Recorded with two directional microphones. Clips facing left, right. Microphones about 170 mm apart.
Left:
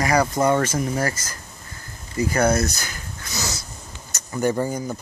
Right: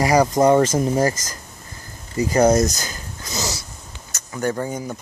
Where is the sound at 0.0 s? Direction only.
15° right (ahead or behind).